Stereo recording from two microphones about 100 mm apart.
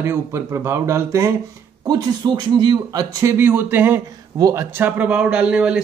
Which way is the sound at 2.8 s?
35° right (ahead or behind).